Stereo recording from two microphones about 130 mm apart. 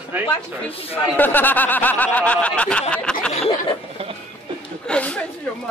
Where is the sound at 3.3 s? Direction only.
55° left (ahead or behind).